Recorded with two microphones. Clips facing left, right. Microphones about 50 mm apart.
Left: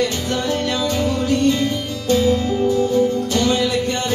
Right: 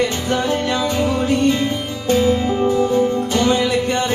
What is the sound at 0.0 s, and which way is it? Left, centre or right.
Music, right.